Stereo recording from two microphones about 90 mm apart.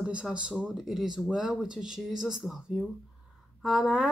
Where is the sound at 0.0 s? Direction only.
10° right (ahead or behind).